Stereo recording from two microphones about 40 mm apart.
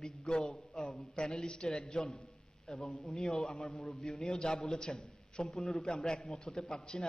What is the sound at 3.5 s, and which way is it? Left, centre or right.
Speech, centre.